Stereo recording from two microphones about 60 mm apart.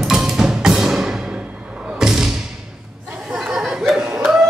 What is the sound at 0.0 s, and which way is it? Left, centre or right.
Music, centre.